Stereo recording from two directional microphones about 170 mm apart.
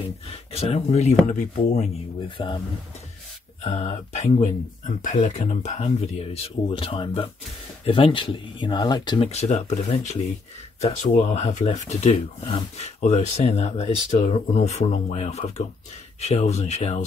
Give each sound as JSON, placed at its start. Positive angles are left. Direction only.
{"t": 0.3, "sound": "speech", "side_deg": 35}
{"t": 2.1, "sound": "speech", "side_deg": 30}
{"t": 3.7, "sound": "speech", "side_deg": 40}
{"t": 9.3, "sound": "speech", "side_deg": 40}